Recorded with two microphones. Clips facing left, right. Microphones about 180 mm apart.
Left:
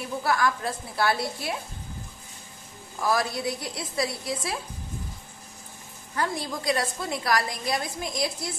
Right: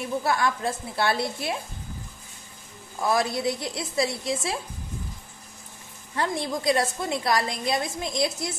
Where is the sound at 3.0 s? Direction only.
25° right (ahead or behind).